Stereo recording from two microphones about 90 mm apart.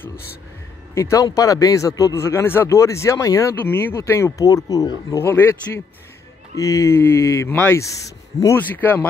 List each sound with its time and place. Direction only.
0.9 s speech: 35° left (ahead or behind)
3.6 s speech: 25° left (ahead or behind)
4.0 s speech: 35° left (ahead or behind)
5.2 s speech: 25° left (ahead or behind)
6.5 s speech: 35° left (ahead or behind)
8.5 s speech: 20° left (ahead or behind)